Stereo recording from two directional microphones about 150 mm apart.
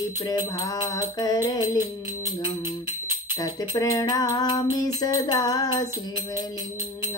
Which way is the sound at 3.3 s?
25° left (ahead or behind).